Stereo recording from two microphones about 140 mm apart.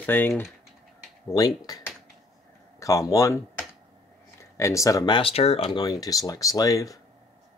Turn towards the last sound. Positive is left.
turn(degrees=25)  # may be behind; listen again after turning